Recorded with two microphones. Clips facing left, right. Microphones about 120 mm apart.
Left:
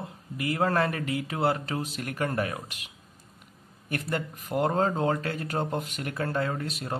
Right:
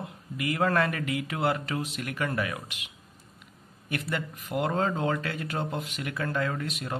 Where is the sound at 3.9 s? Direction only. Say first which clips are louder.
Left 1 dB; 40° left (ahead or behind).